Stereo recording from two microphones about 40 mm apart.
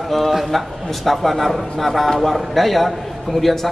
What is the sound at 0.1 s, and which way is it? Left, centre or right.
A man's voice, centre.